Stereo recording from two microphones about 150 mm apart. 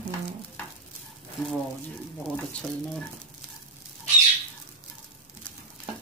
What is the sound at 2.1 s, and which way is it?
Speech, centre (ahead or behind).